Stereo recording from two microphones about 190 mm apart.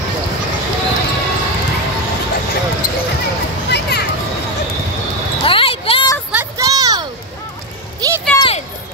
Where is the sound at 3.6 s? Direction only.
60° left (ahead or behind).